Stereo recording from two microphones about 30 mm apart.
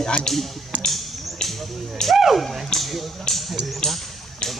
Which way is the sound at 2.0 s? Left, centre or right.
Left.